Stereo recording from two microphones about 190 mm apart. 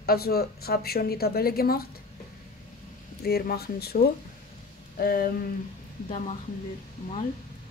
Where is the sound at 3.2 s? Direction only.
55° left (ahead or behind).